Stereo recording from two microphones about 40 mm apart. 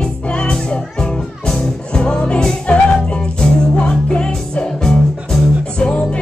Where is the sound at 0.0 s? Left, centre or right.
Left.